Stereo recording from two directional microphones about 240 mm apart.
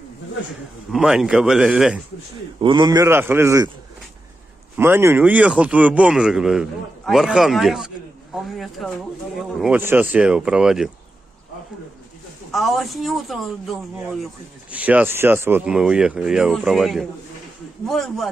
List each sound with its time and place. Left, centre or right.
0.9 s speech: centre
2.6 s a man's voice: centre
4.7 s speech: centre
12.4 s speech: centre